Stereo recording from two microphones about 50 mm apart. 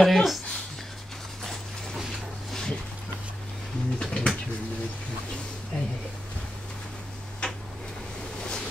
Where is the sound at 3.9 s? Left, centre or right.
Centre.